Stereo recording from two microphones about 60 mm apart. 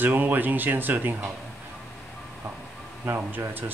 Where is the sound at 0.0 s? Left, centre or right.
Right.